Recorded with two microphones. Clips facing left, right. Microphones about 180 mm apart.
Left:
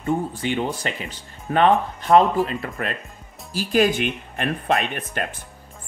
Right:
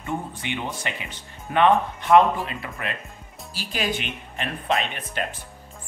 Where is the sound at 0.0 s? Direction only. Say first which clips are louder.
Left 7 dB; 35° left (ahead or behind).